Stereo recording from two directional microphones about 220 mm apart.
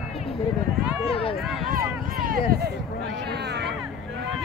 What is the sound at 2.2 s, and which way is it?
Speech, 45° right (ahead or behind).